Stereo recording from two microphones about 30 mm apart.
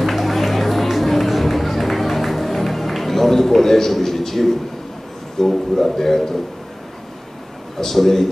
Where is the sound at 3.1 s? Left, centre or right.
Centre.